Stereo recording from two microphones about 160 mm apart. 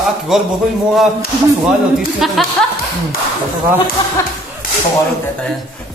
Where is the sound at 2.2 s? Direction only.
Centre (ahead or behind).